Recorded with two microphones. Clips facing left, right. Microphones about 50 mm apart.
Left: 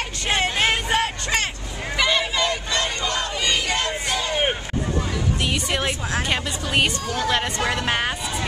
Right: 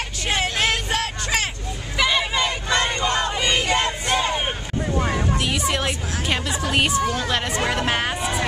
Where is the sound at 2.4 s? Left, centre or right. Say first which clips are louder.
Right 1 dB; right.